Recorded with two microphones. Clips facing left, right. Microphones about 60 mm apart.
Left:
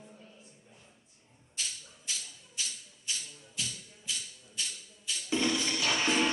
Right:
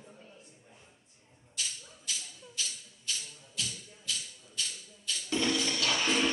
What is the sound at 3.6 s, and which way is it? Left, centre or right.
Music, centre.